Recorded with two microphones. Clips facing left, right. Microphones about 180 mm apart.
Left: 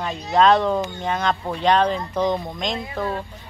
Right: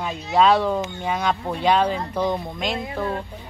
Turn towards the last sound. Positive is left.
turn(degrees=-5)  # may be behind; listen again after turning